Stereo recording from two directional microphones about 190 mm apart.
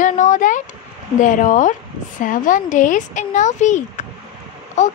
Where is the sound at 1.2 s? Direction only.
45° left (ahead or behind).